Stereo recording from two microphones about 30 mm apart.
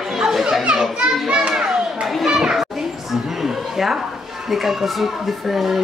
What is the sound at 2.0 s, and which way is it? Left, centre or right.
Children playing, centre.